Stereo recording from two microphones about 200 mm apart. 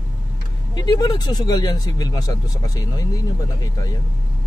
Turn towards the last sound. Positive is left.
turn(degrees=20)  # may be behind; listen again after turning